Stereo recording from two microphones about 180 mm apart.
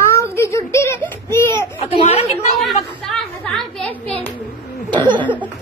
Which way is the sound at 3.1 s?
Centre (ahead or behind).